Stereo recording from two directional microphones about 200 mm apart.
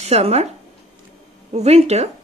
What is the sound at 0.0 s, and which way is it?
Speech, 30° right (ahead or behind).